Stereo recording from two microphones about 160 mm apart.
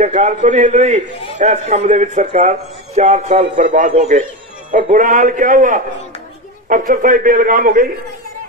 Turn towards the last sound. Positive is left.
turn(degrees=-60)  # may be behind; listen again after turning